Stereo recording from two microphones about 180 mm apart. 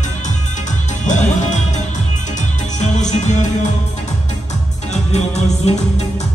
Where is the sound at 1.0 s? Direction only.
40° left (ahead or behind).